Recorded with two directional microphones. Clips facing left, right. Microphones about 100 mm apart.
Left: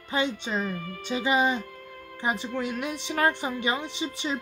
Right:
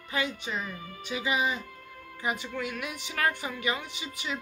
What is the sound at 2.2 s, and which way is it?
Speech, 30° left (ahead or behind).